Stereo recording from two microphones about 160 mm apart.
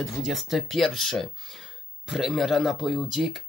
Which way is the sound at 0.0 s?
Centre (ahead or behind).